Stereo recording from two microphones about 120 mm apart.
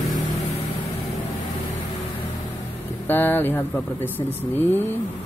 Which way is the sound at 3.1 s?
15° left (ahead or behind).